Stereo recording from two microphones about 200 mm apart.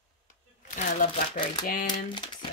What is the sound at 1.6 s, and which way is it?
Speech, 45° left (ahead or behind).